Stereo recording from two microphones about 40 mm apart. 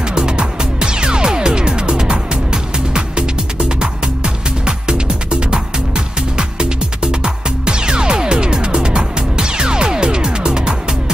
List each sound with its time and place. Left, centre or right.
0.1 s music: right